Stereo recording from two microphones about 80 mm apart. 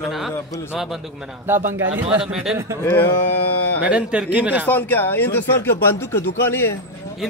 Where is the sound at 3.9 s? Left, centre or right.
Centre.